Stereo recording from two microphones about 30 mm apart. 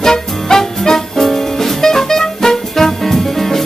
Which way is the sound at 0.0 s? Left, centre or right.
Centre.